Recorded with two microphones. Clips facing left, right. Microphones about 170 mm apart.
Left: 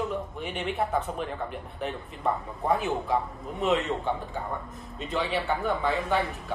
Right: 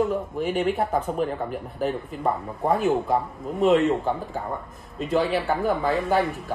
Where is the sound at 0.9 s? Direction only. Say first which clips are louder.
Right 5 dB; 40° right (ahead or behind).